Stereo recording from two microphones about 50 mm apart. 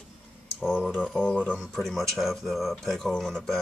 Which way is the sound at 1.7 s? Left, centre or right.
Centre.